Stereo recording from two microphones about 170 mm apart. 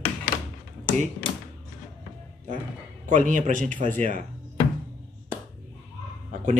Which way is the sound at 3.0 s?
45° right (ahead or behind).